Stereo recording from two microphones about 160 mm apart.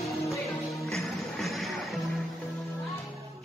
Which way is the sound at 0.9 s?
Centre (ahead or behind).